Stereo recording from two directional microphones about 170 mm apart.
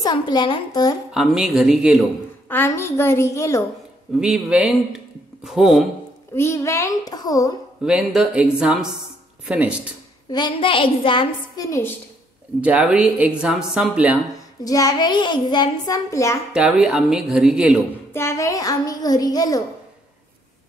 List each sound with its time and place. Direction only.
0.0 s a child's voice: 25° left (ahead or behind)
1.1 s speech: centre (ahead or behind)
2.4 s a child's voice: 15° left (ahead or behind)
4.2 s speech: 5° right (ahead or behind)
6.3 s a child's voice: 15° left (ahead or behind)
7.8 s speech: 5° right (ahead or behind)
10.3 s a child's voice: 30° left (ahead or behind)
12.6 s speech: 5° right (ahead or behind)
14.6 s a child's voice: 20° left (ahead or behind)
16.5 s speech: centre (ahead or behind)
18.1 s a child's voice: 15° left (ahead or behind)